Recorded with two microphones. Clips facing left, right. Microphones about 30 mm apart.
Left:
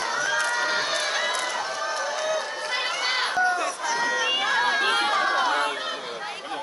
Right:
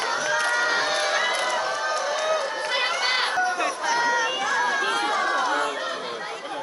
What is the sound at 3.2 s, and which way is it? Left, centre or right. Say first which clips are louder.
Crowd: even; centre.